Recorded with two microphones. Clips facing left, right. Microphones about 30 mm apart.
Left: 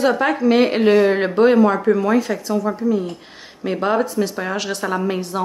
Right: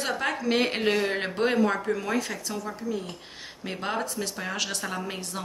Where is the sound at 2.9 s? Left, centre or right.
Centre.